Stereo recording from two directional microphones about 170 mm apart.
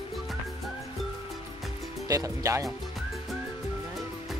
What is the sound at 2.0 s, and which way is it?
Music, 20° right (ahead or behind).